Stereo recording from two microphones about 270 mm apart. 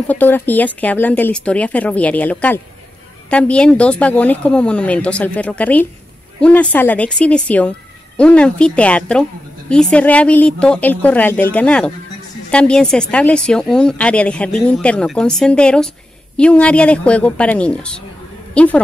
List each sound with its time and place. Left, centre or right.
0.1 s a woman's voice: centre